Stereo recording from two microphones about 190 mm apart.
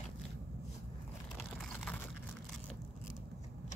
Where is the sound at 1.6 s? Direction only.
5° left (ahead or behind).